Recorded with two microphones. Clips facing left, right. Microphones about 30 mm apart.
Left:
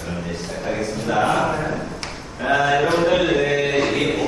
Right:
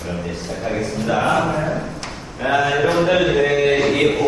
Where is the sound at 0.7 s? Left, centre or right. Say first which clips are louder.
Right 1 dB; centre.